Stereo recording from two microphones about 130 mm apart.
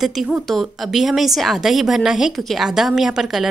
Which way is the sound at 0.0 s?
Centre (ahead or behind).